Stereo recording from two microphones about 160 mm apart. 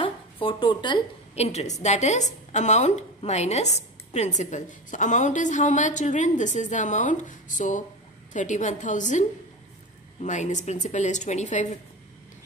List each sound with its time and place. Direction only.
0.0 s a sound: 35° left (ahead or behind)
1.3 s a woman's voice: 40° left (ahead or behind)
10.2 s a woman's voice: 50° left (ahead or behind)